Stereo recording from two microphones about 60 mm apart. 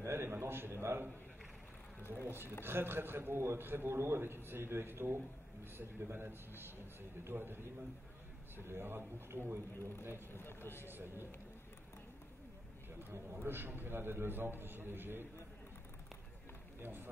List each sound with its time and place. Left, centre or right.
0.0 s a man's voice: right
2.0 s speech: left
2.2 s a man's voice: right
8.5 s a man's voice: right
10.3 s speech: left
10.9 s a man's voice: right
13.1 s a man's voice: right
16.8 s a man's voice: right